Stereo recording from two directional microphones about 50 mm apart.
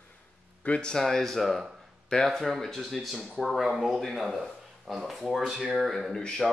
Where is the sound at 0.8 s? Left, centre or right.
Centre.